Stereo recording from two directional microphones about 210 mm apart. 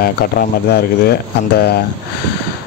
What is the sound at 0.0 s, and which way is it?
Speech, 50° left (ahead or behind).